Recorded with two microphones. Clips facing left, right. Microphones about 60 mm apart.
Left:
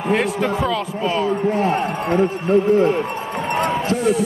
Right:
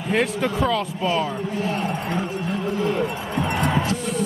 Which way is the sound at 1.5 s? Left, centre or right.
Left.